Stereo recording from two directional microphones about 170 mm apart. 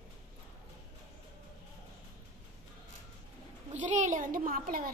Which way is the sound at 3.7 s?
45° right (ahead or behind).